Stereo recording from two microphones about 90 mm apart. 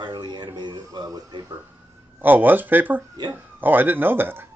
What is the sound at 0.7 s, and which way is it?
Speech, 40° right (ahead or behind).